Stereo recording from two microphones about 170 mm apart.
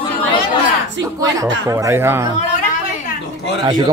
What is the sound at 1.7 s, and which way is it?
Speech, 15° right (ahead or behind).